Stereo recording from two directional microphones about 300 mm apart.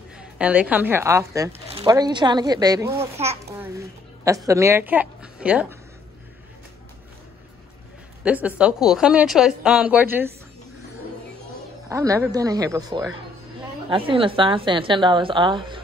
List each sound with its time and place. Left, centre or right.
0.2 s speech: centre
3.3 s a sound: centre
4.5 s a woman's voice: centre
8.2 s a woman's voice: centre
11.9 s speech: centre